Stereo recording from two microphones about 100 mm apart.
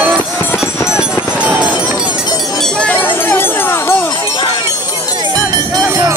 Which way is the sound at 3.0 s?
20° left (ahead or behind).